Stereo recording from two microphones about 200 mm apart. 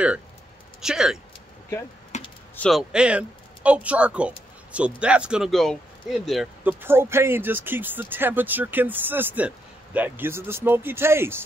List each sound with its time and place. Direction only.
0.7 s speech: 5° right (ahead or behind)
2.1 s typing: 35° left (ahead or behind)
2.5 s speech: 5° left (ahead or behind)
2.9 s speech: 5° right (ahead or behind)